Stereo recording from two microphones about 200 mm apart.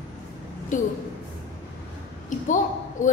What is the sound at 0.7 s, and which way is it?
Speech, 40° left (ahead or behind).